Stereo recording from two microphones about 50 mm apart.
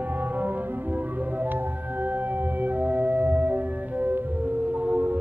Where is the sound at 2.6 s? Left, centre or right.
Right.